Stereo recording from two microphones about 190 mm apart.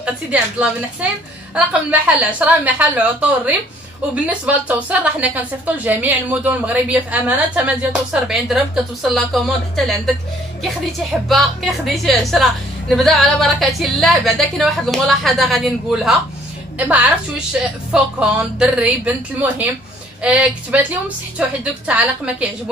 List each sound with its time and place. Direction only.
0.0 s a woman's voice: 5° right (ahead or behind)